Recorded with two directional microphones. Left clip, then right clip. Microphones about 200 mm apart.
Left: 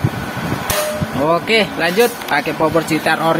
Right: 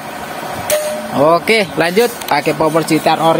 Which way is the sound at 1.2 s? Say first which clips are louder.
Right 3 dB; 30° right (ahead or behind).